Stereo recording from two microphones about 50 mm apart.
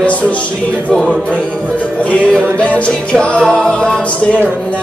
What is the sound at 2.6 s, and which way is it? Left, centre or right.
Music, left.